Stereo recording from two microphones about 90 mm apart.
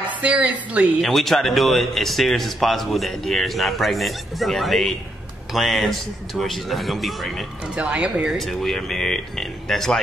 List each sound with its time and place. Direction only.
0.2 s speech: 15° right (ahead or behind)
1.0 s a man's voice: centre (ahead or behind)
7.6 s speech: 10° right (ahead or behind)
8.4 s a man's voice: centre (ahead or behind)